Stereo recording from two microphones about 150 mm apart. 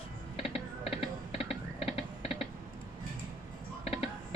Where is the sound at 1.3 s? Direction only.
40° left (ahead or behind).